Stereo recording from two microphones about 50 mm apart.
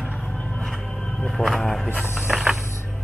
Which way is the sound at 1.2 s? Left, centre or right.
Centre.